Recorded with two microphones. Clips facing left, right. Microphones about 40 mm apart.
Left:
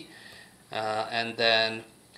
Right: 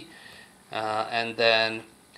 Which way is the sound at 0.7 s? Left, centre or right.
Centre.